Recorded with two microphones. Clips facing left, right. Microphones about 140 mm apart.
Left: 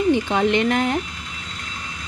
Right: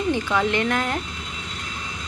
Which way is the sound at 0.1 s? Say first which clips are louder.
Left 2 dB; 20° left (ahead or behind).